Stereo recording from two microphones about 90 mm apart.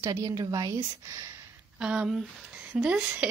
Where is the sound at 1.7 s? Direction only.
10° right (ahead or behind).